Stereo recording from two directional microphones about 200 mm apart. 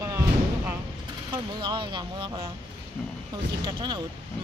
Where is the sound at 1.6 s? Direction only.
25° right (ahead or behind).